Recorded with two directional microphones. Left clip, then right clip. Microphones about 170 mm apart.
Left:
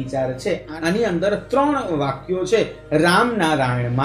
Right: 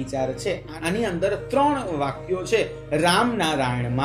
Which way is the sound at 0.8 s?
35° right (ahead or behind).